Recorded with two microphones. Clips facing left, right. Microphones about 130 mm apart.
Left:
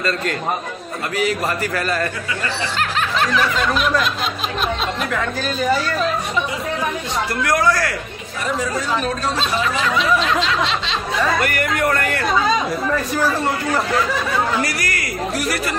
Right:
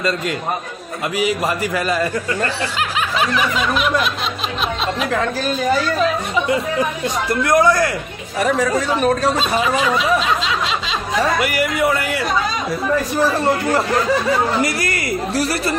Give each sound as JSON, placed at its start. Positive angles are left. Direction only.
{"t": 1.1, "sound": "speech", "side_deg": -10}
{"t": 3.2, "sound": "a sound", "side_deg": -5}
{"t": 7.4, "sound": "speech", "side_deg": -20}
{"t": 8.4, "sound": "speech", "side_deg": -65}
{"t": 9.6, "sound": "a sound", "side_deg": -5}
{"t": 11.3, "sound": "speech", "side_deg": -10}
{"t": 13.1, "sound": "a woman's voice", "side_deg": -25}